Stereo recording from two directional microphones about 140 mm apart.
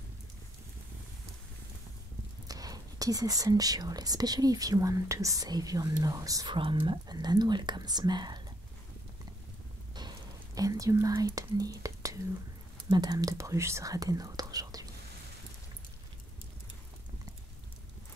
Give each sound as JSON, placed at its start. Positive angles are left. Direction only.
{"t": 2.4, "sound": "speech", "side_deg": -25}
{"t": 6.5, "sound": "speech", "side_deg": -35}
{"t": 9.9, "sound": "whispering", "side_deg": -30}
{"t": 12.9, "sound": "speech", "side_deg": -30}